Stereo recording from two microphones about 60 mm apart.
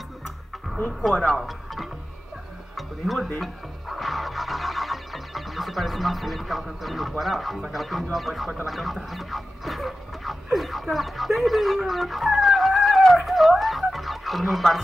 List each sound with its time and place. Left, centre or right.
1.0 s speech: centre
3.9 s music: centre
8.6 s duck: centre